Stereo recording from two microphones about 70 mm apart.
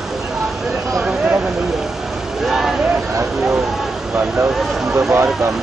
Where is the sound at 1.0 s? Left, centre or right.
Centre.